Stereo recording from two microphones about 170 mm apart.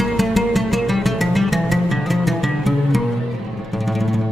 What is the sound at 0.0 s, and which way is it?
Music, centre (ahead or behind).